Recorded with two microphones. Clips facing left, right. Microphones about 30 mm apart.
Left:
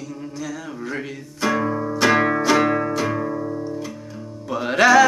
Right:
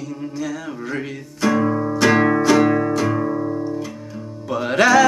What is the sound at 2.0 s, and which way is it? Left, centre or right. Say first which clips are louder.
Music: right 2 dB; centre.